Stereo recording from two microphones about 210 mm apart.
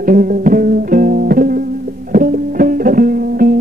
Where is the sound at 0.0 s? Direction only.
40° right (ahead or behind).